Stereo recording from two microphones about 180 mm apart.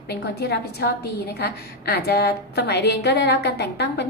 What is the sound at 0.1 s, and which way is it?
A woman's voice, 65° left (ahead or behind).